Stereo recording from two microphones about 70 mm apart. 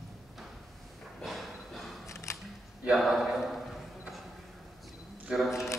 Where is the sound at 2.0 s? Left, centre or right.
Left.